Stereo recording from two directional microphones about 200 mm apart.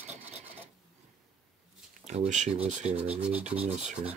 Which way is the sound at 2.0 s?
35° right (ahead or behind).